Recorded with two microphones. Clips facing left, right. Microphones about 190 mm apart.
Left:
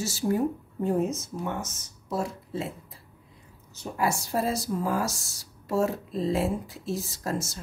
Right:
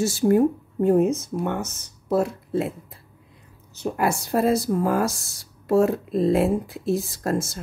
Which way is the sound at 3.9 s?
60° right (ahead or behind).